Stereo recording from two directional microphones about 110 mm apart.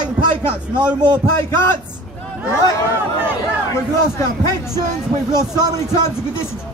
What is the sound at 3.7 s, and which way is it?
A man's voice, 25° left (ahead or behind).